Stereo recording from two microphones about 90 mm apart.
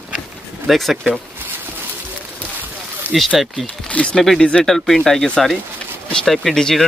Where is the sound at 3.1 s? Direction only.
20° left (ahead or behind).